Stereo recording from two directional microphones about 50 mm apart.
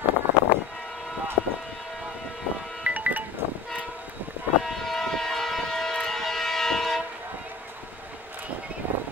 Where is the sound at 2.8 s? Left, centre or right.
Right.